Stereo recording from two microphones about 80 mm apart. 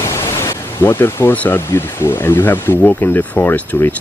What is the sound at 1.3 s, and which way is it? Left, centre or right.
Speech, left.